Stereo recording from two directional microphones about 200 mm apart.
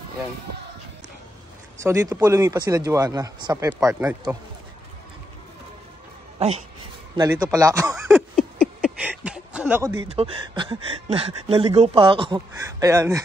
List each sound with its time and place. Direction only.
1.8 s speech: 15° right (ahead or behind)
7.2 s speech: 15° right (ahead or behind)
8.1 s a sound: centre (ahead or behind)
9.9 s speech: 30° right (ahead or behind)